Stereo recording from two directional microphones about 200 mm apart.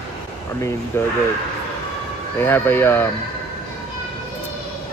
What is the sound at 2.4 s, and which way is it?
Speech, 10° left (ahead or behind).